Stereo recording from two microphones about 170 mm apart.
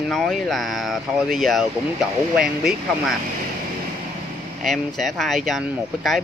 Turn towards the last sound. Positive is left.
turn(degrees=0)  # may be behind; listen again after turning